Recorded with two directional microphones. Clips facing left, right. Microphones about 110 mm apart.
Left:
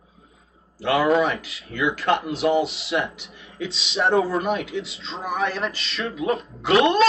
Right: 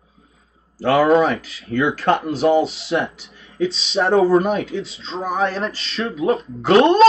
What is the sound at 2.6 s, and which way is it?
Speech, centre (ahead or behind).